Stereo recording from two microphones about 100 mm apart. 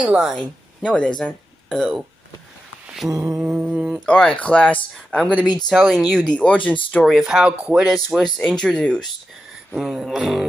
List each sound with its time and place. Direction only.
0.0 s speech: 15° right (ahead or behind)
0.3 s speech: centre (ahead or behind)
3.1 s a sound: 35° right (ahead or behind)
3.3 s speech: 15° right (ahead or behind)
3.7 s a sound: 10° right (ahead or behind)
4.0 s speech: 10° left (ahead or behind)
9.8 s speech: 5° right (ahead or behind)